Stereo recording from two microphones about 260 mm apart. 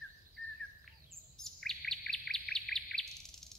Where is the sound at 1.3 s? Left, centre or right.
Centre.